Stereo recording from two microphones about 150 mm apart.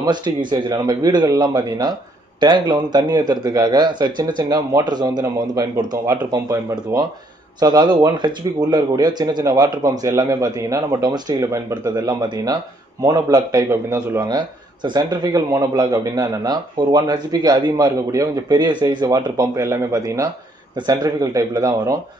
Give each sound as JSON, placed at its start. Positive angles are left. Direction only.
{"t": 0.0, "sound": "a man's voice", "side_deg": -30}